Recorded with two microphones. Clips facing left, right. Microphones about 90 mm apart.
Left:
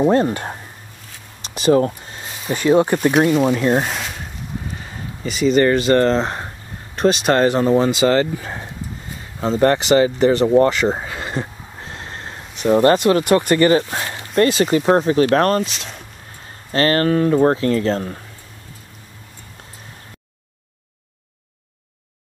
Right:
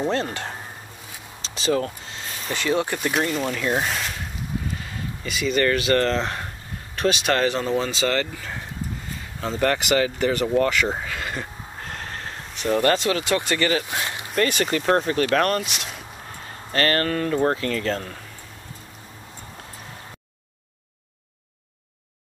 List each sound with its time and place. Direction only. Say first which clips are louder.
0.1 s speech: left 9 dB; 15° left (ahead or behind)
1.7 s speech: left 8 dB; 30° left (ahead or behind)
2.1 s a sound: left 5 dB; 10° left (ahead or behind)
2.7 s speech: left 9 dB; 25° left (ahead or behind)
3.1 s speech: left 8 dB; 5° left (ahead or behind)
3.4 s speech: left 8 dB; 25° left (ahead or behind)
3.7 s a sound: left 5 dB; 5° left (ahead or behind)
5.2 s speech: left 7 dB; 30° left (ahead or behind)
7.7 s speech: left 8 dB; 15° left (ahead or behind)
12.9 s speech: left 8 dB; 45° left (ahead or behind)
13.6 s speech: left 8 dB; 30° left (ahead or behind)
14.9 s speech: left 5 dB; 15° left (ahead or behind)
15.3 s speech: left 5 dB; 35° left (ahead or behind)
16.7 s speech: left 6 dB; 25° left (ahead or behind)